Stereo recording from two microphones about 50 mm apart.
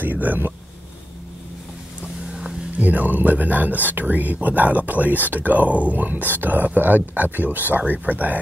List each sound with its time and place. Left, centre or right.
0.0 s speech: right
2.3 s a sound: centre
2.8 s speech: right